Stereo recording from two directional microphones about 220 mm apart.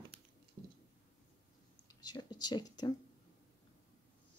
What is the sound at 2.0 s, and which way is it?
Speech, 20° left (ahead or behind).